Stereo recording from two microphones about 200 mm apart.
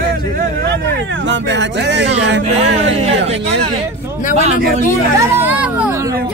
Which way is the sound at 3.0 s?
30° right (ahead or behind).